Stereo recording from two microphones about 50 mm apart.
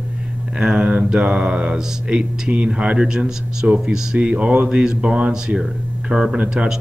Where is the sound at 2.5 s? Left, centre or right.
Right.